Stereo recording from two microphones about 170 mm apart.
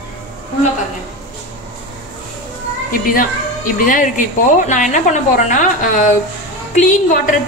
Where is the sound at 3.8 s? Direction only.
50° left (ahead or behind).